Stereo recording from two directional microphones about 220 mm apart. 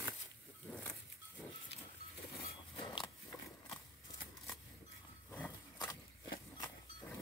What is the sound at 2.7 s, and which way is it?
Biting, 20° left (ahead or behind).